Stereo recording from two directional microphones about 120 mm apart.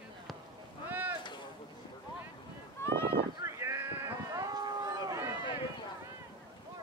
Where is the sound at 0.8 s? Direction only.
15° right (ahead or behind).